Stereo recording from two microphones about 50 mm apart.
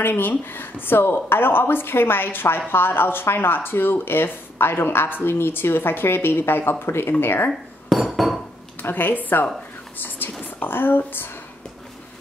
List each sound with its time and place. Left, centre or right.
0.0 s speech: left
7.9 s cutlery: centre
8.8 s speech: left